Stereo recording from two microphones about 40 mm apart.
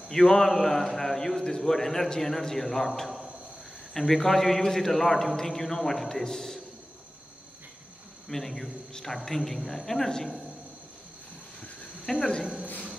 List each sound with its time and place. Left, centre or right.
0.1 s a man's voice: centre
8.3 s a man's voice: centre
12.1 s a man's voice: centre